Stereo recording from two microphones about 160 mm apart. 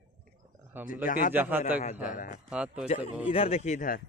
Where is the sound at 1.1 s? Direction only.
60° left (ahead or behind).